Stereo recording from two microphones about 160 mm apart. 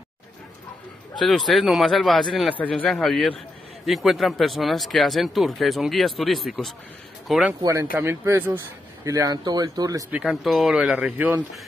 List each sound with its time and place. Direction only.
1.2 s speech: centre (ahead or behind)
7.6 s speech: 15° right (ahead or behind)
10.1 s speech: centre (ahead or behind)